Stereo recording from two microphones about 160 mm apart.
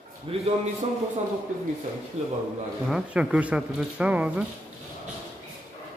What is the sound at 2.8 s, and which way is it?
Speech, 5° right (ahead or behind).